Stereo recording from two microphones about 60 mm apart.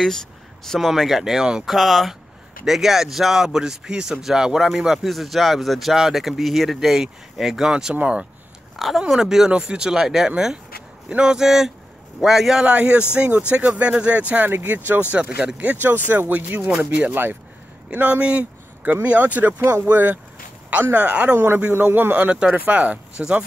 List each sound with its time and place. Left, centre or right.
0.7 s a man's voice: centre
8.7 s a man's voice: centre
12.6 s speech: right
14.3 s speech: right
15.8 s speech: right
21.7 s speech: right; by 23.4 s centre